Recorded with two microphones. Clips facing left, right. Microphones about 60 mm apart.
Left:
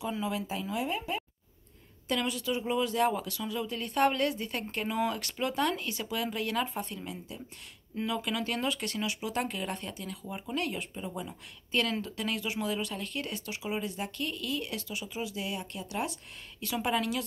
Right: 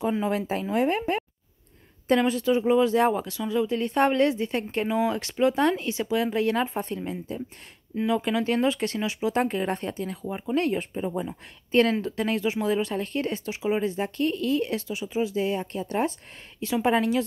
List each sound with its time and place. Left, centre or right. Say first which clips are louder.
0.0 s speech: right 8 dB; right
2.0 s speech: right 10 dB; right
7.9 s speech: right 8 dB; centre